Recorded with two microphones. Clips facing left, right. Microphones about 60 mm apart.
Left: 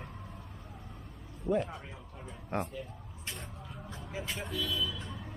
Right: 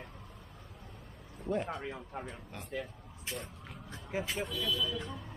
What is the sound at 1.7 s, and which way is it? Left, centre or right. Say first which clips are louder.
Speech: right 6 dB; right.